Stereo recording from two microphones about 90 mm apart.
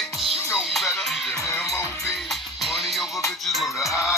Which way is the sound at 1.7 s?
35° left (ahead or behind).